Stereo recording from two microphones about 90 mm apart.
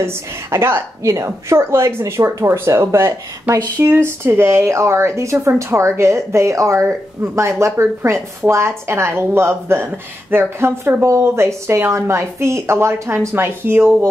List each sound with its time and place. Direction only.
0.0 s a woman's voice: 30° right (ahead or behind)